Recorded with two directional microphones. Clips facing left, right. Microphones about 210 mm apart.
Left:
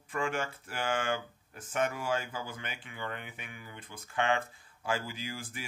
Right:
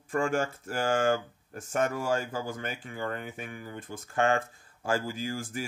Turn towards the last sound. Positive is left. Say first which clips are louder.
# right 7 dB
turn(degrees=-45)  # may be behind; listen again after turning